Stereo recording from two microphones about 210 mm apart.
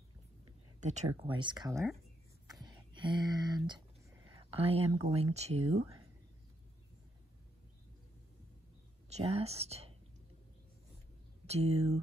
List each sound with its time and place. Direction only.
0.7 s speech: 35° right (ahead or behind)
1.0 s speech: 20° right (ahead or behind)
2.4 s a sound: 20° right (ahead or behind)
4.3 s whispering: 25° right (ahead or behind)
5.0 s speech: 30° right (ahead or behind)
9.1 s speech: 30° right (ahead or behind)
11.4 s speech: 30° right (ahead or behind)